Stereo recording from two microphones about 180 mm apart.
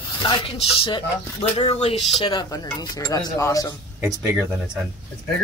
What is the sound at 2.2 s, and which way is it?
Speech, 25° left (ahead or behind).